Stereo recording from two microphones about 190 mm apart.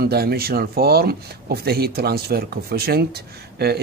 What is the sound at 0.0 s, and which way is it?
Speech, 55° right (ahead or behind).